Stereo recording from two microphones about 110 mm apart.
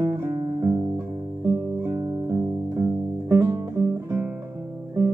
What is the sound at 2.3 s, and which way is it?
Music, 30° right (ahead or behind).